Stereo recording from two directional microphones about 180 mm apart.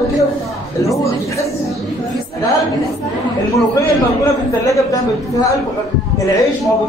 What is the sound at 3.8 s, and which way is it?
A man's voice, 15° left (ahead or behind).